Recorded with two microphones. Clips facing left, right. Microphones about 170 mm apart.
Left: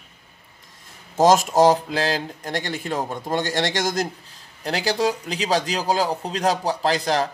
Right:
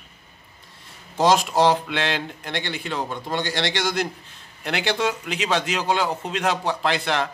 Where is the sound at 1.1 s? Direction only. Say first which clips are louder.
Left 3 dB; 45° left (ahead or behind).